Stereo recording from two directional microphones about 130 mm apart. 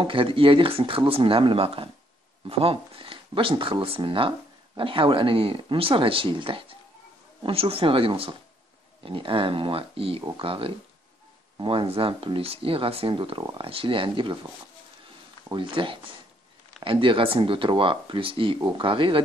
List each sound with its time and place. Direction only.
0.0 s speech: 40° right (ahead or behind)
15.5 s speech: 40° right (ahead or behind)